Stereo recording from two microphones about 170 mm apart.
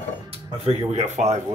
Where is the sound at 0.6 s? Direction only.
40° right (ahead or behind).